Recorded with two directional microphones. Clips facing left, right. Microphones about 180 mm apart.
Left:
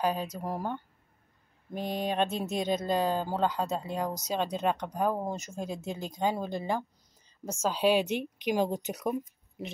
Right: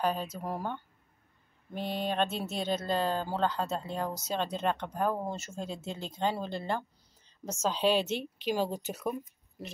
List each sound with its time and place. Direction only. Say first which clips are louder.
0.0 s a woman's voice: left 1 dB; 10° left (ahead or behind)
1.8 s speech: left 1 dB; 45° left (ahead or behind)
2.0 s a woman's voice: left 2 dB; 15° left (ahead or behind)